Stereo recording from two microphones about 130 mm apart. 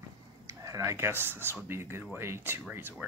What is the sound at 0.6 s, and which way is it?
Speech, 25° right (ahead or behind).